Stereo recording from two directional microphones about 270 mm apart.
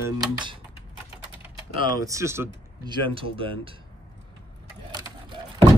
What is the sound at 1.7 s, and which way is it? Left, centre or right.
A man's voice, centre.